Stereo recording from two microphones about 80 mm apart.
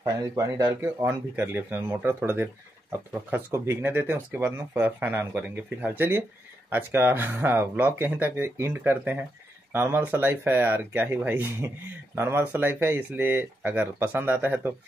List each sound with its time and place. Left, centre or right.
0.0 s speech: right
0.7 s speech: right
3.5 s speech: right